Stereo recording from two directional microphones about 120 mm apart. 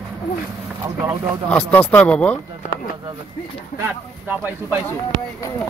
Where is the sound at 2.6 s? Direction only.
90° left.